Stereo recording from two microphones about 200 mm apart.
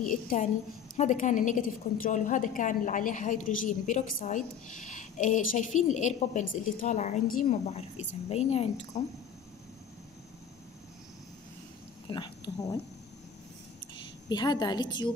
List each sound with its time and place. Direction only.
0.9 s a woman's voice: 35° left (ahead or behind)
12.1 s speech: 20° left (ahead or behind)
14.3 s a woman's voice: 20° left (ahead or behind)